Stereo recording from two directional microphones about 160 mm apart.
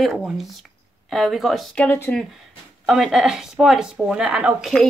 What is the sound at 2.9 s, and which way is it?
Speech, centre (ahead or behind).